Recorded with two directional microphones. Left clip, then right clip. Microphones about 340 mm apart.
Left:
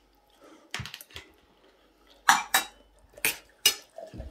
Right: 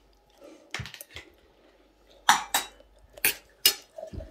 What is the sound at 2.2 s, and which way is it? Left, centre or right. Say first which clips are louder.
Dishes: left 1 dB; centre.